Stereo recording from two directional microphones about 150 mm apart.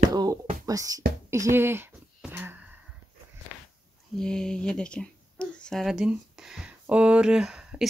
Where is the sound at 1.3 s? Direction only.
20° right (ahead or behind).